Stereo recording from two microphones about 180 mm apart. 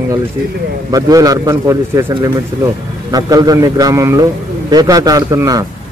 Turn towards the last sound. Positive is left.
turn(degrees=-20)  # may be behind; listen again after turning